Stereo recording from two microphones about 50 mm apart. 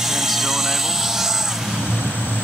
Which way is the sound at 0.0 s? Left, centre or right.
Centre.